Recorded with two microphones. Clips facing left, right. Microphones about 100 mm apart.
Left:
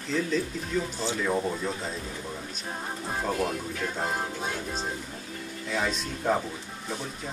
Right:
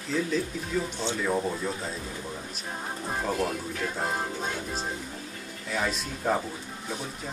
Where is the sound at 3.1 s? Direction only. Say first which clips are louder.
Even; centre (ahead or behind).